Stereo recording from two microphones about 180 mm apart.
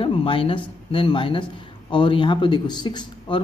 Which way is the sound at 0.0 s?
30° left (ahead or behind).